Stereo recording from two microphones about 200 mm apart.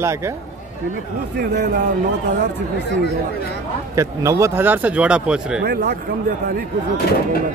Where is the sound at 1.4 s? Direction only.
55° right (ahead or behind).